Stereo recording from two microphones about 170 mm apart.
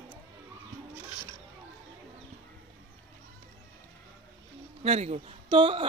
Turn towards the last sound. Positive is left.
turn(degrees=-30)  # may be behind; listen again after turning